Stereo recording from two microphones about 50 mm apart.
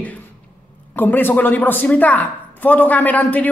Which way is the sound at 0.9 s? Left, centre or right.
Left.